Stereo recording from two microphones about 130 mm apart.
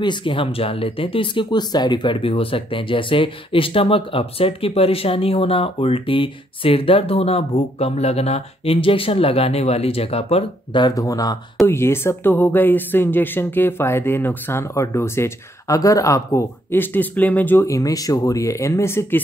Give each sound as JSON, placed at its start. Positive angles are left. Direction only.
{"t": 0.0, "sound": "speech", "side_deg": 40}
{"t": 10.8, "sound": "speech", "side_deg": 25}